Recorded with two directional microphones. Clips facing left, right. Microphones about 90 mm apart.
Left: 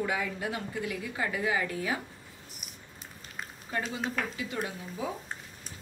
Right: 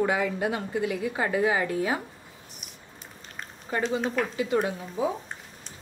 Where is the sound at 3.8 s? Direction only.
35° right (ahead or behind).